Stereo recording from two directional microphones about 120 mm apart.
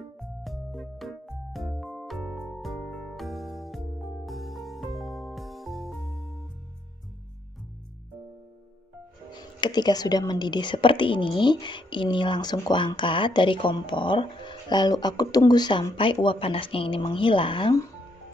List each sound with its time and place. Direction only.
0.2 s music: centre (ahead or behind)
9.3 s a woman's voice: 35° left (ahead or behind)